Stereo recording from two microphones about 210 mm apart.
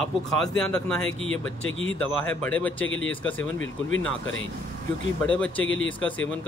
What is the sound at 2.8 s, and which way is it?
Speech, 70° left (ahead or behind).